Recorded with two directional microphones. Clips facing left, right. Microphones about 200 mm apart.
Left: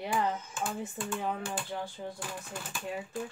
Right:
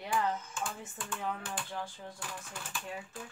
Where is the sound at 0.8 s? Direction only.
30° left (ahead or behind).